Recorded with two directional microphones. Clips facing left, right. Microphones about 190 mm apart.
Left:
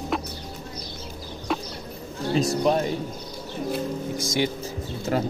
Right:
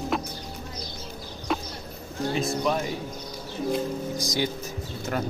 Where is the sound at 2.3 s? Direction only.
35° left (ahead or behind).